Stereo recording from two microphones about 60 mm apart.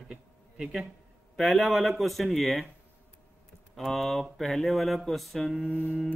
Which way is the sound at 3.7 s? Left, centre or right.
Centre.